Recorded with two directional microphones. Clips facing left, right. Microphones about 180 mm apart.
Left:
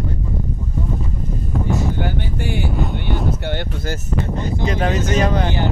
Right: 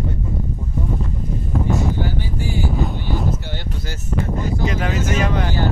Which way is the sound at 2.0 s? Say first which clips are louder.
Left 1 dB; 65° left (ahead or behind).